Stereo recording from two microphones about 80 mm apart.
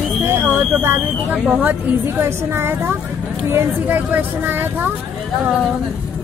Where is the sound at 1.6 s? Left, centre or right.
Right.